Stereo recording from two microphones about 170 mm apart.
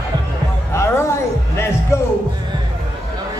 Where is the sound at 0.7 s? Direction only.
15° left (ahead or behind).